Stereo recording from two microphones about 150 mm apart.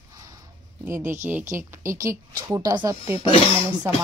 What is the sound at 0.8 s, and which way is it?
Speech, 15° right (ahead or behind).